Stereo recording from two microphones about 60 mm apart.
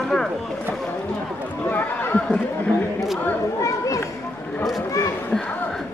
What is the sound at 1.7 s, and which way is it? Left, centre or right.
Speech, left.